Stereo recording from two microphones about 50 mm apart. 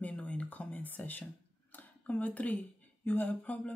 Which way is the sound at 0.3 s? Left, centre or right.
Left.